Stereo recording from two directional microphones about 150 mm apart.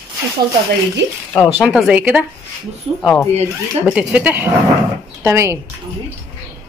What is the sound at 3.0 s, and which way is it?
Speech, 15° left (ahead or behind).